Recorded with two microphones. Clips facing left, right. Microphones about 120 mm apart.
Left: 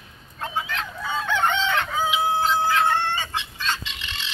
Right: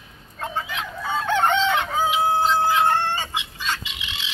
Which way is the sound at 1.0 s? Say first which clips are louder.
Right 3 dB; 45° right (ahead or behind).